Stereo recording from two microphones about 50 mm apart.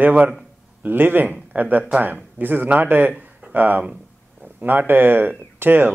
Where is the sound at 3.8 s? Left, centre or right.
Centre.